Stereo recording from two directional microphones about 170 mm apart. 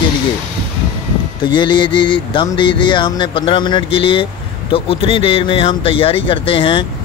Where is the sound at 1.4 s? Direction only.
25° left (ahead or behind).